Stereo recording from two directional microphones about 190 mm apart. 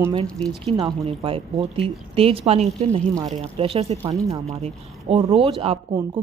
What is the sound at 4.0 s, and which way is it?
Speech, 15° right (ahead or behind).